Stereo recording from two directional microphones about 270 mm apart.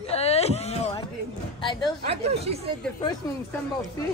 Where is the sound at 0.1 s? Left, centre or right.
Left.